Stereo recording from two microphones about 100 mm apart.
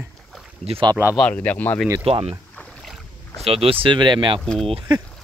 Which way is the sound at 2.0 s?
75° right (ahead or behind).